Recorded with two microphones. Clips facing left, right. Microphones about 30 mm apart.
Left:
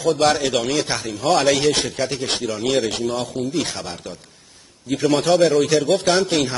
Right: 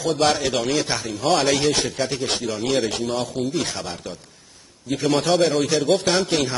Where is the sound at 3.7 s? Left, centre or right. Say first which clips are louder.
Even; centre.